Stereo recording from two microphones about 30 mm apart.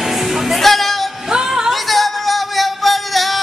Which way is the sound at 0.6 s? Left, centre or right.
Centre.